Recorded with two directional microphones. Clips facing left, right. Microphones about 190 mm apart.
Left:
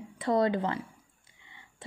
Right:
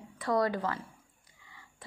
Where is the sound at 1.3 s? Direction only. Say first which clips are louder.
Even; 25° left (ahead or behind).